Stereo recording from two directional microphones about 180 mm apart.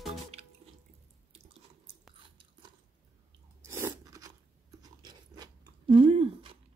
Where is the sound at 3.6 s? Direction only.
15° right (ahead or behind).